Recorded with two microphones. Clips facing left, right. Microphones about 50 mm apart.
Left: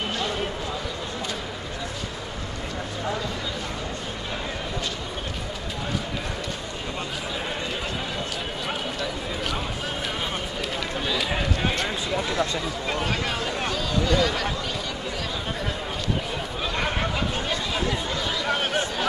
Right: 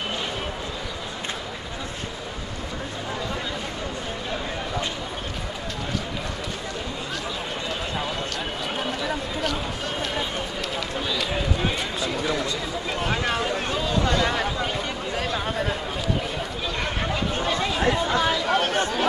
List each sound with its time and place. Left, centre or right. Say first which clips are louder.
11.0 s run: left 1 dB; centre
12.9 s a sound: right 3 dB; centre
13.7 s chatter: left 2 dB; right
16.8 s a sound: even; centre
17.6 s chatter: right 4 dB; right
18.5 s chatter: right 3 dB; centre